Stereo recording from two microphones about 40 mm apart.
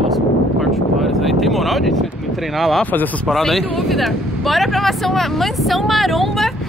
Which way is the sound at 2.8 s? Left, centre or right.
Left.